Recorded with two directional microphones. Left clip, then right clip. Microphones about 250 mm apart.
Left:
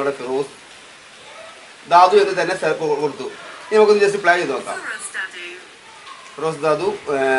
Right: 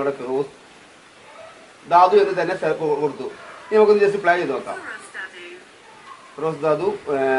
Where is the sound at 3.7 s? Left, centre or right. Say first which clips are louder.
Left 1 dB; centre.